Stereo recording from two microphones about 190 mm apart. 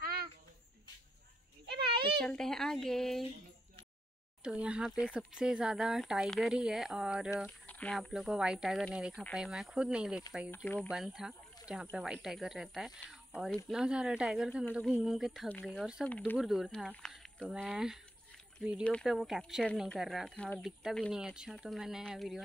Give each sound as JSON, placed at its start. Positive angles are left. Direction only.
{"t": 0.0, "sound": "a sound", "side_deg": -50}
{"t": 1.7, "sound": "a sound", "side_deg": -55}
{"t": 2.2, "sound": "speech", "side_deg": 5}
{"t": 4.4, "sound": "speech", "side_deg": -5}
{"t": 7.4, "sound": "speech", "side_deg": 10}
{"t": 10.5, "sound": "speech", "side_deg": 10}
{"t": 10.9, "sound": "speech", "side_deg": 0}